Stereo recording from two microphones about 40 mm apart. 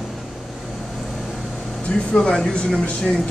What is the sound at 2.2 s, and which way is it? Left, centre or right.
Speech, left.